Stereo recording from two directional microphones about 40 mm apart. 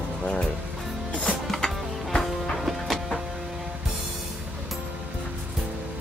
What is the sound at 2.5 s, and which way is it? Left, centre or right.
Music, centre.